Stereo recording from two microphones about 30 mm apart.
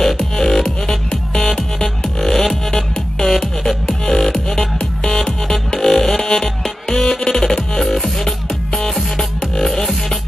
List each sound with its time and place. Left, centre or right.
0.2 s music: centre
7.8 s music: centre
8.3 s music: centre